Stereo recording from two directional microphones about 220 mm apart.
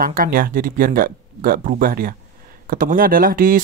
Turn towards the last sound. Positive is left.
turn(degrees=-40)  # may be behind; listen again after turning